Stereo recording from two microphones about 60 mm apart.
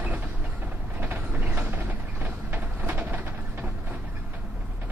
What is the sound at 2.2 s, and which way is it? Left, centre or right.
Vehicle, right.